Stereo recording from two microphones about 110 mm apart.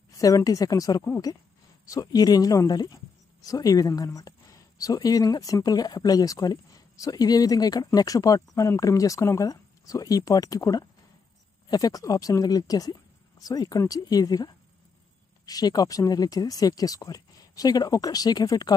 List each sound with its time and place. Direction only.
0.2 s speech: 35° left (ahead or behind)